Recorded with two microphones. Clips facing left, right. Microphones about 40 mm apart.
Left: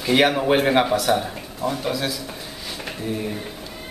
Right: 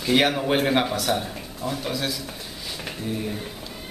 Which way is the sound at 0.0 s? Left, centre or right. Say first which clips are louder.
Left 3 dB; centre.